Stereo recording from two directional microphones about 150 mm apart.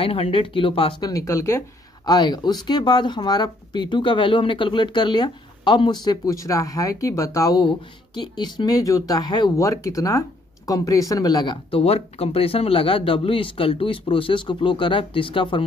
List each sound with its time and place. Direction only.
0.0 s speech: 40° left (ahead or behind)
1.0 s speech: 20° left (ahead or behind)